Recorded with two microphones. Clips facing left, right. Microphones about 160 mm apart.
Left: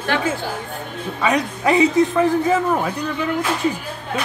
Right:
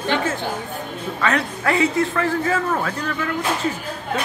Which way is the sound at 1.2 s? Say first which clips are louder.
Left 3 dB; 15° left (ahead or behind).